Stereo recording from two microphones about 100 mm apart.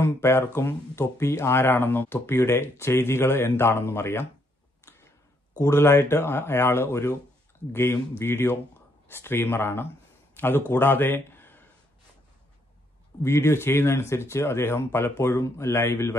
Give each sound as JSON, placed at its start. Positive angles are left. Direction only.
{"t": 0.0, "sound": "speech", "side_deg": 25}
{"t": 5.6, "sound": "speech", "side_deg": 25}
{"t": 10.3, "sound": "a sound", "side_deg": 25}
{"t": 10.7, "sound": "speech", "side_deg": 20}
{"t": 13.2, "sound": "speech", "side_deg": 25}